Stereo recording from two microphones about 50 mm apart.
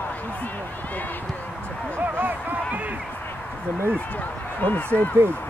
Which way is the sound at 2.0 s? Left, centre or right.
Right.